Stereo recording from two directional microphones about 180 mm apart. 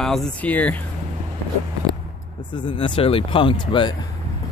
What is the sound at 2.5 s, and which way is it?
Speech, 25° left (ahead or behind).